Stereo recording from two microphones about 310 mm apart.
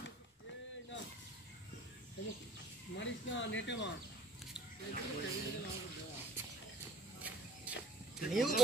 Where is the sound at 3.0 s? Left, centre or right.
Left.